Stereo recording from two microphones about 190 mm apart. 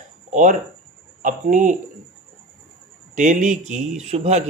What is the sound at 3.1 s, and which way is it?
Speech, 40° right (ahead or behind).